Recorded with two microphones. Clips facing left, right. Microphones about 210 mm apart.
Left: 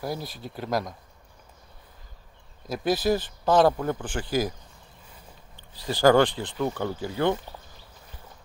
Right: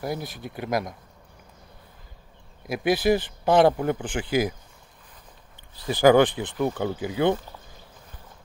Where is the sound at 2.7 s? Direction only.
15° right (ahead or behind).